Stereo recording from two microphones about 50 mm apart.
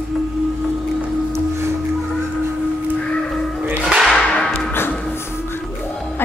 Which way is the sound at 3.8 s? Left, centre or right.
Centre.